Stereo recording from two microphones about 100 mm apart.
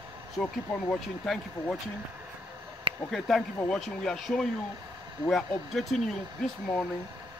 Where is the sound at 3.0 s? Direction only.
Centre (ahead or behind).